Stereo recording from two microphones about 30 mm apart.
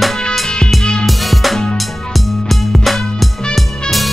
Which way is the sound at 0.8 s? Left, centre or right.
Left.